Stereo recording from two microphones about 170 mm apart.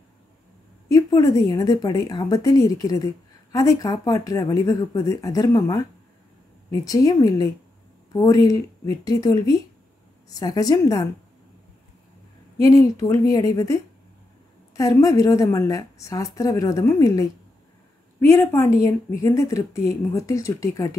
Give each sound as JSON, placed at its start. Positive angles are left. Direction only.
{"t": 0.8, "sound": "speech", "side_deg": 20}
{"t": 7.1, "sound": "speech", "side_deg": 20}
{"t": 12.6, "sound": "speech", "side_deg": 20}
{"t": 14.8, "sound": "a woman's voice", "side_deg": 20}